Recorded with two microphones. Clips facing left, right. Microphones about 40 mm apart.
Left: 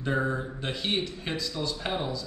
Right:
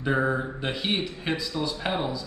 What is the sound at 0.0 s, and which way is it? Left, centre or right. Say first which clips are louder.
A man's voice: right 4 dB; centre.